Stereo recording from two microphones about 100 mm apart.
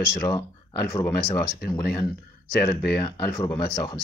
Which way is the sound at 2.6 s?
35° left (ahead or behind).